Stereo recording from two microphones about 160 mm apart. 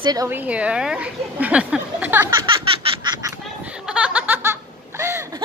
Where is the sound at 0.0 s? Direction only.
25° right (ahead or behind).